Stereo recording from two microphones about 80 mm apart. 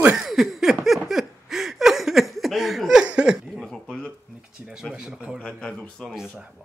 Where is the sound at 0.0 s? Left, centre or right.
Centre.